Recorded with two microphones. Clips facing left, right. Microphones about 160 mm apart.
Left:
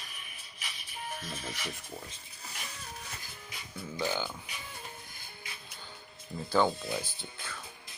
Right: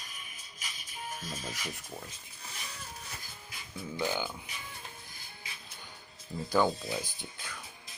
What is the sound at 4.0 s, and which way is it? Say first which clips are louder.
Speech: even; 10° right (ahead or behind).